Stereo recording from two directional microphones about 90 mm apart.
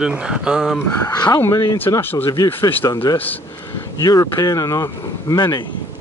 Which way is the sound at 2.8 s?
40° left (ahead or behind).